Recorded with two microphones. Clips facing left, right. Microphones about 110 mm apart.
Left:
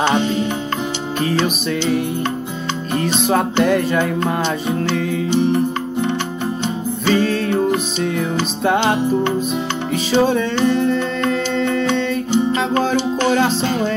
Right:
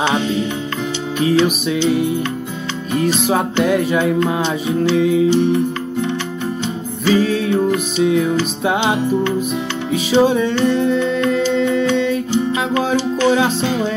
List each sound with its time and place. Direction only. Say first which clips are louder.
0.1 s music: left 1 dB; centre (ahead or behind)
3.3 s music: left 4 dB; 5° right (ahead or behind)
7.1 s music: right 2 dB; 5° right (ahead or behind)
10.1 s music: right 2 dB; 5° right (ahead or behind)
12.3 s music: left 1 dB; 30° left (ahead or behind)